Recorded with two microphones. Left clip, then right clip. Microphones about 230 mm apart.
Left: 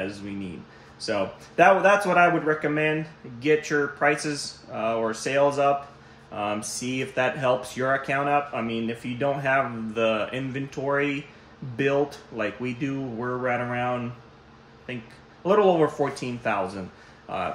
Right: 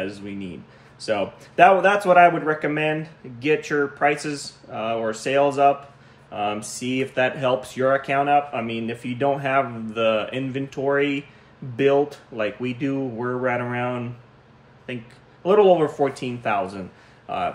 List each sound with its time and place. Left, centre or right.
0.9 s speech: centre
15.4 s speech: centre